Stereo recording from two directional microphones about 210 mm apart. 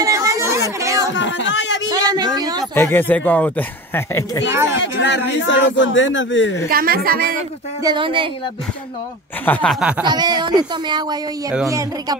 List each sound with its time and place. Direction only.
0.0 s a sound: 15° right (ahead or behind)
1.1 s a sound: 60° left (ahead or behind)
2.0 s speech: 20° right (ahead or behind)
2.7 s speech: 10° left (ahead or behind)
4.5 s speech: 15° right (ahead or behind)
4.9 s speech: 60° left (ahead or behind)
6.7 s a woman's voice: 45° right (ahead or behind)
7.8 s speech: 20° right (ahead or behind)
9.5 s snicker: 5° left (ahead or behind)
10.0 s speech: 20° right (ahead or behind)